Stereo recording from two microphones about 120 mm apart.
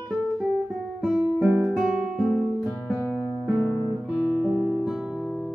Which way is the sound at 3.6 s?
15° left (ahead or behind).